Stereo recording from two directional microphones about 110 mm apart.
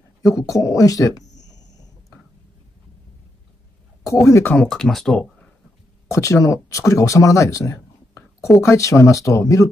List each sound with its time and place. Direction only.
0.2 s speech: 30° left (ahead or behind)
4.0 s speech: 30° left (ahead or behind)
4.6 s speech: centre (ahead or behind)
6.0 s speech: 25° left (ahead or behind)